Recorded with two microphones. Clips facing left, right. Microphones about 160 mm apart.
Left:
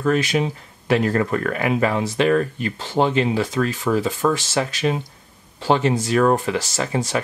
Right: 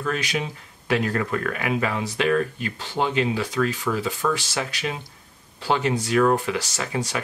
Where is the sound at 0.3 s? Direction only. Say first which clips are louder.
Left 6 dB; 40° left (ahead or behind).